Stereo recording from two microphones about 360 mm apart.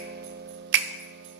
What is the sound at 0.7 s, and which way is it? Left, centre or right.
Music, right.